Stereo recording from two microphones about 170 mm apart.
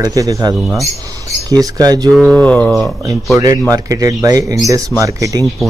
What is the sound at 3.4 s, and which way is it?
Speech, 20° right (ahead or behind).